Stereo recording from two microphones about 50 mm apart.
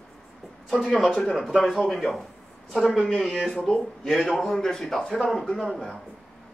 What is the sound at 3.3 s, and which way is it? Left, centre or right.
Speech, centre.